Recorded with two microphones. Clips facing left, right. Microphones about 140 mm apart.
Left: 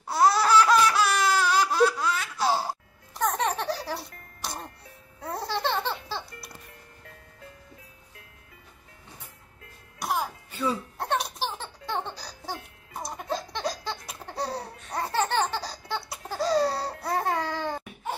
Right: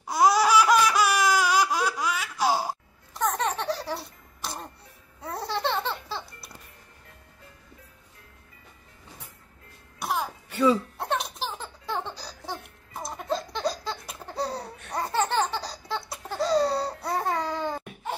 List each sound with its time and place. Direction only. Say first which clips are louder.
0.0 s laughter: right 1 dB; 15° right (ahead or behind)
3.2 s music: even; centre (ahead or behind)
9.9 s throat clearing: even; centre (ahead or behind)
10.5 s music: right 8 dB; 90° right
11.0 s baby laughter: left 1 dB; centre (ahead or behind)
15.0 s laughter: right 1 dB; centre (ahead or behind)